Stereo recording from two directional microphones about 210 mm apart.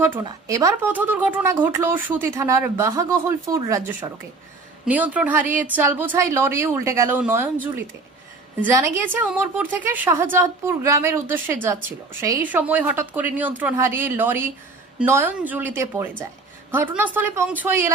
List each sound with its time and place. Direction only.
0.0 s a woman's voice: 15° right (ahead or behind)
4.8 s a woman's voice: 5° right (ahead or behind)